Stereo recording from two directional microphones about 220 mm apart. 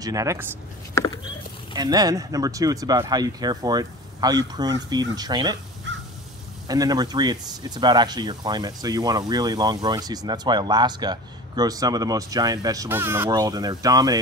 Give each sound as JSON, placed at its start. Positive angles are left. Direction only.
{"t": 0.0, "sound": "speech", "side_deg": -15}
{"t": 1.7, "sound": "speech", "side_deg": -20}
{"t": 6.7, "sound": "speech", "side_deg": -15}